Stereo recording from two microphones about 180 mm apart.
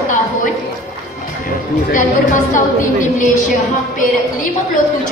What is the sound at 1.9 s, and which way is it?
Speech, 45° left (ahead or behind).